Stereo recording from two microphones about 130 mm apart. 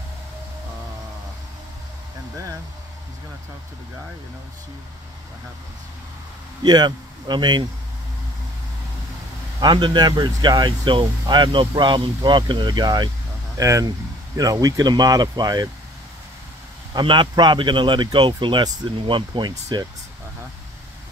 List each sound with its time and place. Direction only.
6.6 s speech: 35° right (ahead or behind)
9.6 s speech: 35° right (ahead or behind)
16.9 s speech: 40° right (ahead or behind)